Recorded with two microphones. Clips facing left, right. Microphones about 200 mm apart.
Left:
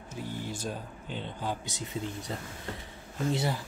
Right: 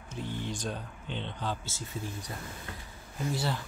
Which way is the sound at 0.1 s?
10° left (ahead or behind).